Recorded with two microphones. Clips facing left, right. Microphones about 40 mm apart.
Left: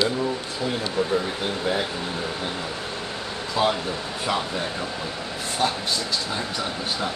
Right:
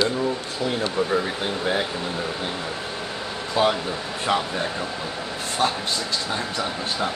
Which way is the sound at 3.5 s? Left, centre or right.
Right.